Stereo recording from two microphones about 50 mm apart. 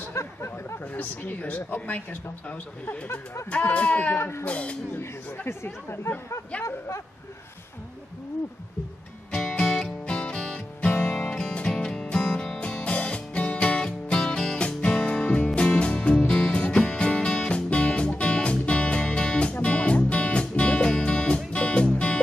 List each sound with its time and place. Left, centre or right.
0.1 s a sound: left
0.9 s speech: left
4.2 s speech: left
4.5 s speech: left
5.5 s speech: left
9.3 s music: centre
10.2 s music: left
11.1 s music: centre
12.5 s music: left